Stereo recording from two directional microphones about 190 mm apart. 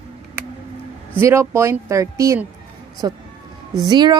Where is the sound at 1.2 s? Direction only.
15° right (ahead or behind).